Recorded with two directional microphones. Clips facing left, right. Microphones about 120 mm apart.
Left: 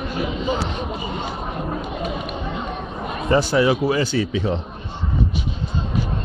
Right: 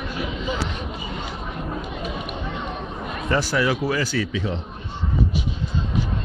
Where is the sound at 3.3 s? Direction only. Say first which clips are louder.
Left 5 dB; 20° left (ahead or behind).